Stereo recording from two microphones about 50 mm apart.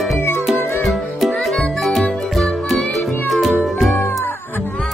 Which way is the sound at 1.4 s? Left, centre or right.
Centre.